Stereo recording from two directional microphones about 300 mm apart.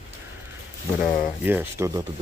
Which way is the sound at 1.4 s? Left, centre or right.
Centre.